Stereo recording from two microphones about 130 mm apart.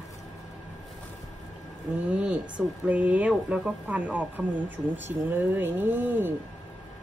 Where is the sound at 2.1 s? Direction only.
10° right (ahead or behind).